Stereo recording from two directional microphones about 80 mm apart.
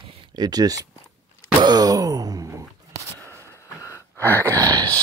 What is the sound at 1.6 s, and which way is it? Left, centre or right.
Groan, right.